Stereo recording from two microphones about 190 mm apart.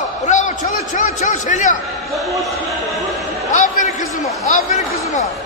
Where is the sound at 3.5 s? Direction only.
40° left (ahead or behind).